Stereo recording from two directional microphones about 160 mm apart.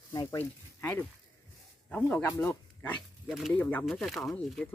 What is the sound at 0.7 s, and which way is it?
Speech, 10° left (ahead or behind).